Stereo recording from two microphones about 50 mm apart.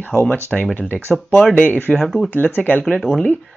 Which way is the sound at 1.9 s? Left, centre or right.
Left.